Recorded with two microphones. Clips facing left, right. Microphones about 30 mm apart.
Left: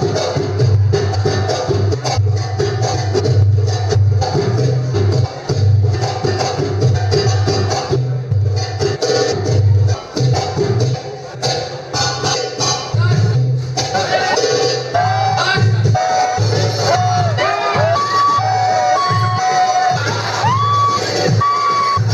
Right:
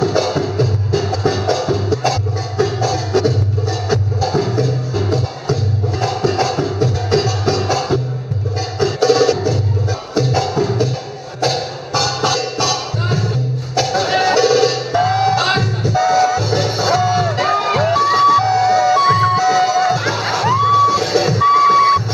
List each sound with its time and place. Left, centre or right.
0.0 s music: centre
12.5 s music: centre
13.9 s music: centre
15.8 s vehicle: centre
17.4 s music: centre
17.9 s music: centre